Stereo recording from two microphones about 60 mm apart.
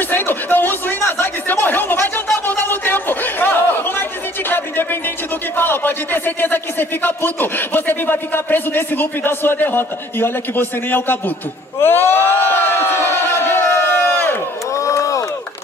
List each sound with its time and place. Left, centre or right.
0.1 s a sound: left
2.2 s chatter: left
4.5 s music: left
5.6 s speech: left
11.8 s crowd: left
14.7 s crowd: left